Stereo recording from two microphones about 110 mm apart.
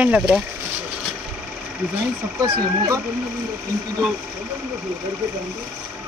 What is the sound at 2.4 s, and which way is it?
Speech, 35° right (ahead or behind).